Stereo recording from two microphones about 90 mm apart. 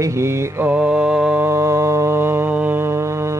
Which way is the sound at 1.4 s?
30° right (ahead or behind).